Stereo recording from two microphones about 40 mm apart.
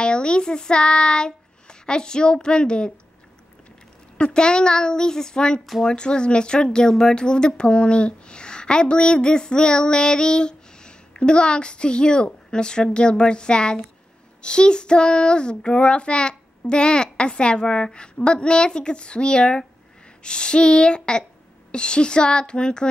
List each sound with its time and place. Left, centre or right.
0.0 s child singing: left
4.2 s speech: left